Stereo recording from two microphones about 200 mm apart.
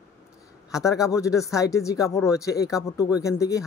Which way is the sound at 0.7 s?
15° left (ahead or behind).